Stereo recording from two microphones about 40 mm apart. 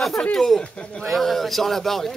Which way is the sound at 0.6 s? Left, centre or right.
Left.